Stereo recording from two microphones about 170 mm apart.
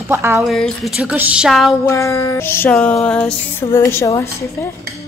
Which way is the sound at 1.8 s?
15° left (ahead or behind).